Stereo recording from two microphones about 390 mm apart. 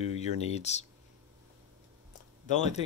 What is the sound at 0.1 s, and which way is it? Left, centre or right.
Speech, centre.